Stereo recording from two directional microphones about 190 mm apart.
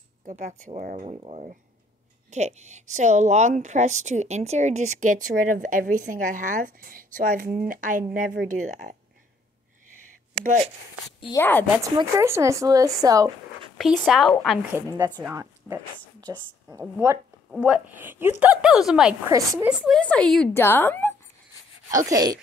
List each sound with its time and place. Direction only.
0.3 s speech: 40° right (ahead or behind)
1.0 s speech: 30° right (ahead or behind)
10.4 s speech: 40° right (ahead or behind)
11.1 s a woman's voice: 20° left (ahead or behind)
11.8 s a woman's voice: 15° right (ahead or behind)
13.7 s a woman's voice: centre (ahead or behind)
14.7 s a woman's voice: 15° right (ahead or behind)
17.5 s a woman's voice: 5° right (ahead or behind)
19.2 s a woman's voice: 15° right (ahead or behind)
19.7 s a woman's voice: centre (ahead or behind)
21.9 s speech: 20° right (ahead or behind)